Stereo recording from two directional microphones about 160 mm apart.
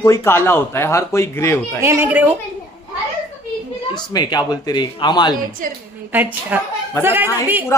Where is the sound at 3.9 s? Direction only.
25° left (ahead or behind).